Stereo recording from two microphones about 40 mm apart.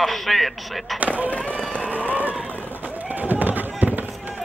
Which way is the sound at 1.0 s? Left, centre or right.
Right.